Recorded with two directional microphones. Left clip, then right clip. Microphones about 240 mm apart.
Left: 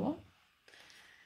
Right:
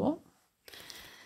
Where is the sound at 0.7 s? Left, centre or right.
Right.